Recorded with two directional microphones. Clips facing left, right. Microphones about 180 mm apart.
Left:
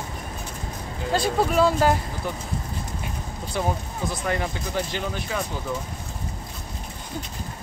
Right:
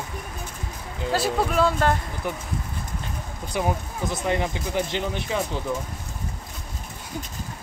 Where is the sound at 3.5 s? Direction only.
15° right (ahead or behind).